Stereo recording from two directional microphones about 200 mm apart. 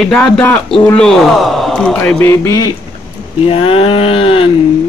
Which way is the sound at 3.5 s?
30° left (ahead or behind).